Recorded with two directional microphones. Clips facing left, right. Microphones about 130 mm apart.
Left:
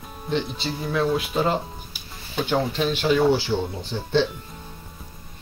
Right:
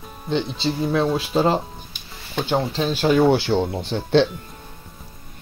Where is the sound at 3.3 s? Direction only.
65° right (ahead or behind).